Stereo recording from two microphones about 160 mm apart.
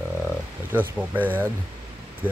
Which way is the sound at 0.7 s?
10° right (ahead or behind).